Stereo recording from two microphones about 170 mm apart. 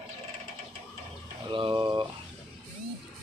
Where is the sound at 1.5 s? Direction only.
30° right (ahead or behind).